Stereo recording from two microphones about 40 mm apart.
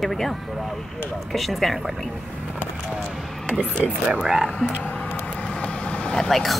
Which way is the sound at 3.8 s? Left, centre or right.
Right.